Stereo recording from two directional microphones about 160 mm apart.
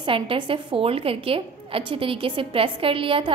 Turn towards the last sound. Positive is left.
turn(degrees=-35)  # may be behind; listen again after turning